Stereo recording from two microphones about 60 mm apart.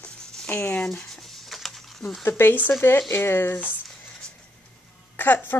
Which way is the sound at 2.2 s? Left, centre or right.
Left.